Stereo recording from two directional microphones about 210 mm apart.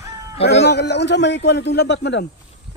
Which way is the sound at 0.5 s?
55° left (ahead or behind).